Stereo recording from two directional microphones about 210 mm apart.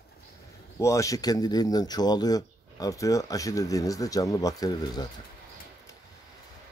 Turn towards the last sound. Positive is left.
turn(degrees=15)  # may be behind; listen again after turning